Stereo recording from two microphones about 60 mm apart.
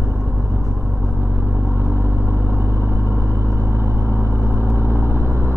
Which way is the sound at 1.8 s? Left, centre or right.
Right.